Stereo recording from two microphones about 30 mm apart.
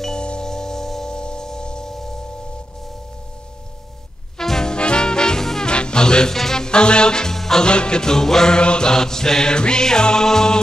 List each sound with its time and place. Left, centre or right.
0.4 s chime: centre
1.1 s music: left
1.9 s singing bowl: centre
4.4 s music: centre
4.7 s music: left
5.4 s music: centre
5.7 s music: left
6.3 s music: centre
6.6 s music: left
7.3 s music: centre
7.6 s music: left
8.5 s music: left